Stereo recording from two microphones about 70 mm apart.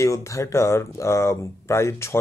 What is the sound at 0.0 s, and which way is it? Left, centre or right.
Speech, left.